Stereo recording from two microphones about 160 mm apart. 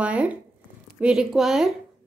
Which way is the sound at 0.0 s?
10° right (ahead or behind).